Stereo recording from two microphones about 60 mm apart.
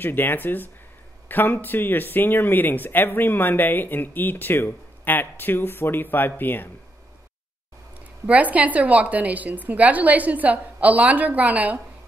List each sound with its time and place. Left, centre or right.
0.0 s speech: left
8.3 s a woman's voice: right